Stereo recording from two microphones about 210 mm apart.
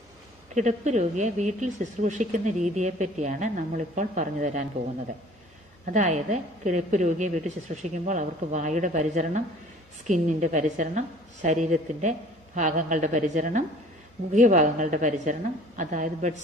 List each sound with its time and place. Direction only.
0.6 s speech: 35° right (ahead or behind)
5.9 s speech: 35° right (ahead or behind)